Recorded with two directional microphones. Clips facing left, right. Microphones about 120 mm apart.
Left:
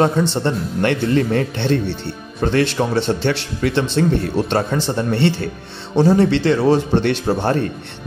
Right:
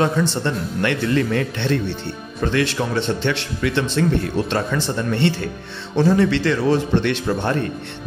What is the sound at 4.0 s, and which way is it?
Speech, 30° left (ahead or behind).